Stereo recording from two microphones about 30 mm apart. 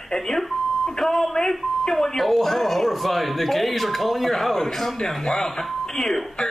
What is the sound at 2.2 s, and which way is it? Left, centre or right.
Speech, centre.